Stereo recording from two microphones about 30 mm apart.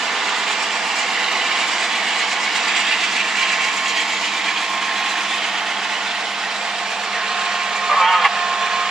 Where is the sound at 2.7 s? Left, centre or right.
Centre.